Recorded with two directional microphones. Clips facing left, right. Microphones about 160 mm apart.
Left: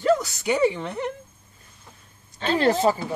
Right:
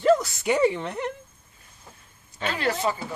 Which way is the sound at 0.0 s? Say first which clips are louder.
Right 1 dB; centre (ahead or behind).